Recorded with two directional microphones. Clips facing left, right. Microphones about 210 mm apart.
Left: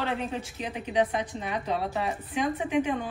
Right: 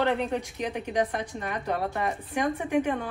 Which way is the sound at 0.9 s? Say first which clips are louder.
Left 4 dB; 10° left (ahead or behind).